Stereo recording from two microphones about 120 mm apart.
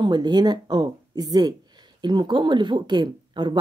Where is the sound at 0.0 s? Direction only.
40° right (ahead or behind).